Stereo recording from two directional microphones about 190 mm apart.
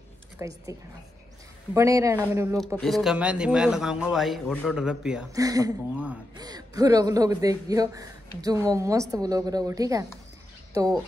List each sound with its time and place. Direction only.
0.4 s a woman's voice: 15° right (ahead or behind)
2.8 s a man's voice: centre (ahead or behind)
5.3 s a man's voice: 20° right (ahead or behind)